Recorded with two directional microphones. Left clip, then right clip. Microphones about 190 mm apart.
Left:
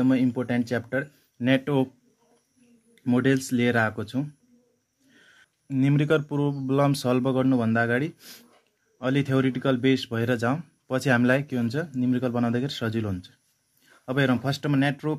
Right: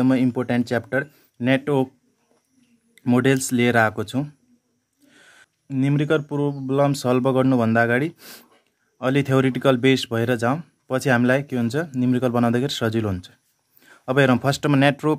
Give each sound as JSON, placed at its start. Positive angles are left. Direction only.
{"t": 0.0, "sound": "speech", "side_deg": -25}
{"t": 2.9, "sound": "speech", "side_deg": -30}
{"t": 5.1, "sound": "a sound", "side_deg": -25}
{"t": 5.7, "sound": "a man's voice", "side_deg": -10}